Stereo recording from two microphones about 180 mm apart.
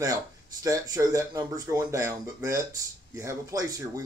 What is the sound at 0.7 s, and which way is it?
Speech, 20° right (ahead or behind).